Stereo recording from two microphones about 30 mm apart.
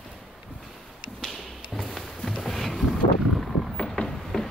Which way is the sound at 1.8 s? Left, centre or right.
Centre.